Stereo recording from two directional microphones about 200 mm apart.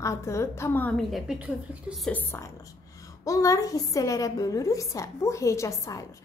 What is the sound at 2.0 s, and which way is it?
A woman's voice, 10° left (ahead or behind).